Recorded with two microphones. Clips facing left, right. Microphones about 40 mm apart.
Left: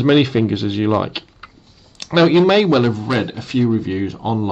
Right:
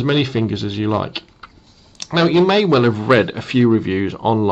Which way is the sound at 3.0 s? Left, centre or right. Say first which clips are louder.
Right 6 dB; right.